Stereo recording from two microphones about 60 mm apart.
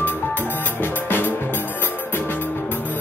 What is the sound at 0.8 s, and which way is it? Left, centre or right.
Music, left.